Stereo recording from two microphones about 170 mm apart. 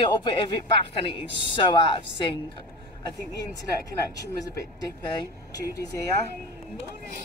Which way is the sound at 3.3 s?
20° left (ahead or behind).